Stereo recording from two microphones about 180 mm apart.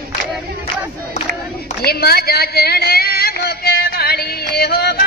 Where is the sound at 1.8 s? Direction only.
60° left (ahead or behind).